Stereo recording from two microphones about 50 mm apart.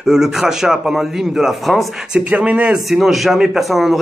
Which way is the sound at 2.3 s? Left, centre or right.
Right.